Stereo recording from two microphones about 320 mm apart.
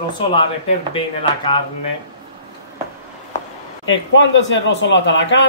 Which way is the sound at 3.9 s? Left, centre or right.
Left.